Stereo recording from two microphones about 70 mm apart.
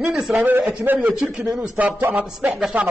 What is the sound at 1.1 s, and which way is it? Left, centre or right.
A man's voice, centre.